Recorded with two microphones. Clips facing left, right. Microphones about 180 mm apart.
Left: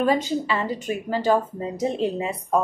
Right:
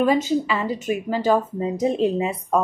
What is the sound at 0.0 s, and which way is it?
A woman's voice, 15° right (ahead or behind).